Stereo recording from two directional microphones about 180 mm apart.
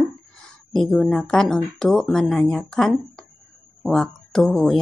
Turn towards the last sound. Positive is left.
turn(degrees=5)  # may be behind; listen again after turning